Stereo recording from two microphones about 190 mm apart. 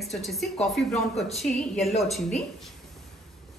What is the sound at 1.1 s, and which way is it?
Speech, 35° left (ahead or behind).